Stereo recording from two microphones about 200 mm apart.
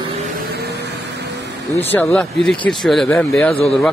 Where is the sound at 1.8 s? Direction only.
10° left (ahead or behind).